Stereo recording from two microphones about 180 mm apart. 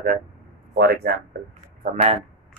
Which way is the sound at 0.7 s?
60° right (ahead or behind).